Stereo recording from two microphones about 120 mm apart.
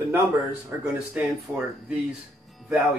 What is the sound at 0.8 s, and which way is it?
Speech, 10° right (ahead or behind).